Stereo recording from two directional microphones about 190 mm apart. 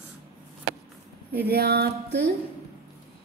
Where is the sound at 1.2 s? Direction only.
55° right (ahead or behind).